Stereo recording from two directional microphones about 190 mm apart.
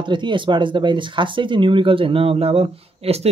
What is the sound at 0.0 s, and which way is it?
Speech, 25° right (ahead or behind).